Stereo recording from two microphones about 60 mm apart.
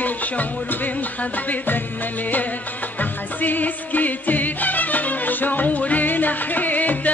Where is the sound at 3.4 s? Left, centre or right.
Left.